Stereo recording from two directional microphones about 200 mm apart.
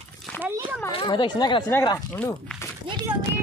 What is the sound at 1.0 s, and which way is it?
Speech, 25° left (ahead or behind).